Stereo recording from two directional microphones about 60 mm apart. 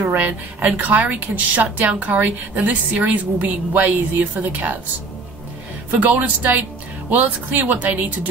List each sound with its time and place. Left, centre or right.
0.1 s a woman's voice: right
5.9 s a woman's voice: right